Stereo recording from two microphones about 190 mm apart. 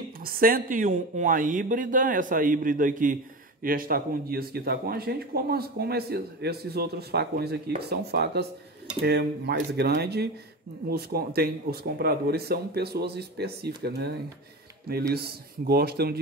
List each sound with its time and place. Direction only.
0.2 s a man's voice: 50° right (ahead or behind)